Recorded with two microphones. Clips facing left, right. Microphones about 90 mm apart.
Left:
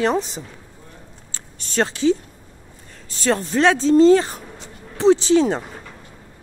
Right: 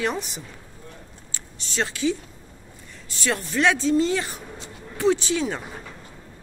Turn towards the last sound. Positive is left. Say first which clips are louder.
# left 9 dB
turn(degrees=30)  # may be behind; listen again after turning